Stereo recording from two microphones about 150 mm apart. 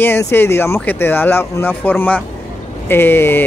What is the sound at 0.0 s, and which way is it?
Speech, 15° left (ahead or behind).